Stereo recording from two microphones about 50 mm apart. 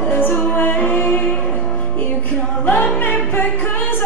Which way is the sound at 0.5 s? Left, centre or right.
Left.